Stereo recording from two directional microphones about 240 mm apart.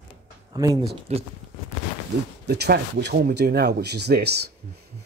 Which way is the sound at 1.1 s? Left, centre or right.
Right.